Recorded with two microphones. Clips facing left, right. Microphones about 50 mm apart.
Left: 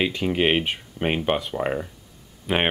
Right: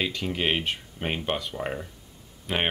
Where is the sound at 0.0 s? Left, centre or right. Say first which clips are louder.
Left 6 dB; centre.